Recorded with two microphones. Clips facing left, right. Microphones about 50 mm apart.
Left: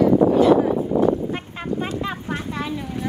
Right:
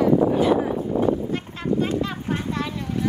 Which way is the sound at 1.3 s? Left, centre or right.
Left.